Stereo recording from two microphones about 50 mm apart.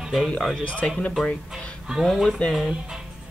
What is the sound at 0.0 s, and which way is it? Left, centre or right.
Music, centre.